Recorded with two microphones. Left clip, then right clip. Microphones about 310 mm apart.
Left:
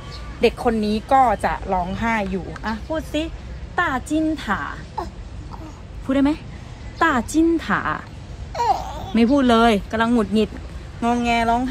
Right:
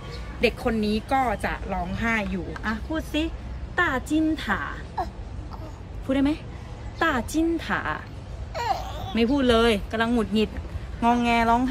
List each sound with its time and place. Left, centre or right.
0.4 s a woman's voice: centre
6.0 s speech: centre
8.5 s a sound: centre
9.1 s speech: centre
11.0 s speech: centre